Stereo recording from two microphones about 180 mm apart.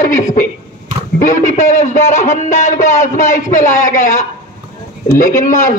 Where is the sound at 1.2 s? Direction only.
45° left (ahead or behind).